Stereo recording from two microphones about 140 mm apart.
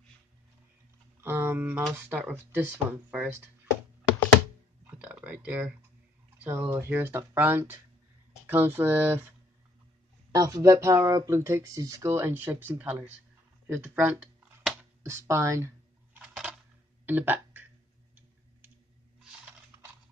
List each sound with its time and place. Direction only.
1.2 s speech: 15° right (ahead or behind)
4.8 s typing: 10° right (ahead or behind)
6.4 s speech: 15° right (ahead or behind)
10.3 s speech: 25° right (ahead or behind)
14.7 s a sound: 15° right (ahead or behind)
16.2 s coin: 5° right (ahead or behind)
17.0 s a sound: 15° right (ahead or behind)